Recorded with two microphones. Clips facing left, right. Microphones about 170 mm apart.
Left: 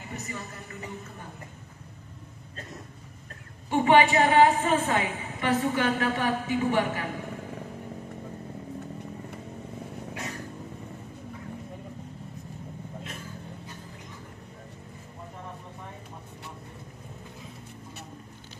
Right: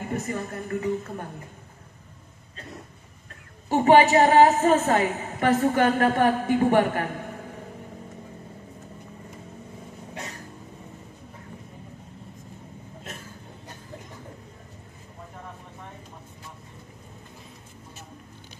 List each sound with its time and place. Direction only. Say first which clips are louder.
0.0 s a woman's voice: right 8 dB; 50° right (ahead or behind)
3.6 s a woman's voice: right 3 dB; 40° right (ahead or behind)